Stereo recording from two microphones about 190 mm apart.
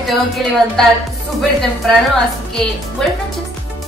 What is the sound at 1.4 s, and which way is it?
Speech, centre (ahead or behind).